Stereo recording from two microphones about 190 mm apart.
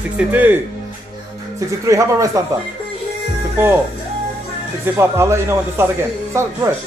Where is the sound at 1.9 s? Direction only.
15° right (ahead or behind).